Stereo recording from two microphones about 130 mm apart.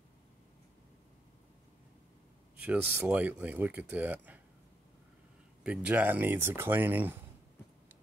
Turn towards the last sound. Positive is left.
turn(degrees=-15)  # may be behind; listen again after turning